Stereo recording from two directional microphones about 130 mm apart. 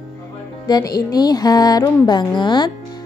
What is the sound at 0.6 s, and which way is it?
A woman's voice, 30° left (ahead or behind).